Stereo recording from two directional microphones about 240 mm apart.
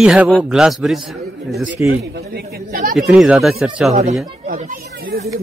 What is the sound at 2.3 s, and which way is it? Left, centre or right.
Speech, right.